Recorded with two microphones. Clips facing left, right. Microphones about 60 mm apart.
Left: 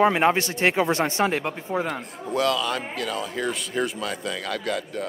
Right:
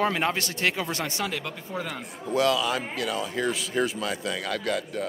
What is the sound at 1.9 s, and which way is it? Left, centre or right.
A man's voice, centre.